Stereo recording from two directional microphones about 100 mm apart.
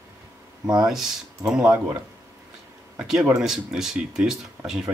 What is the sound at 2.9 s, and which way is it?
Speech, 5° right (ahead or behind).